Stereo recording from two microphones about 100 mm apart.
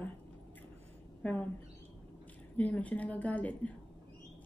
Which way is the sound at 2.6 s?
15° left (ahead or behind).